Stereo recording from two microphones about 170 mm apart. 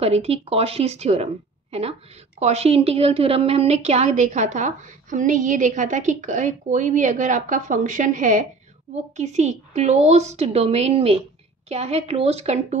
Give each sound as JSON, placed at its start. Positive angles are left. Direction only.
{"t": 0.0, "sound": "a woman's voice", "side_deg": -35}